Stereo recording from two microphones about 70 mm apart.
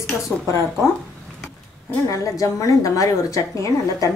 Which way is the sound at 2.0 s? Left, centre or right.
Left.